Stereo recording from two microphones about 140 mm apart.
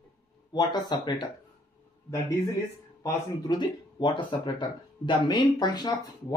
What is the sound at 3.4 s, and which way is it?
Speech, 35° left (ahead or behind).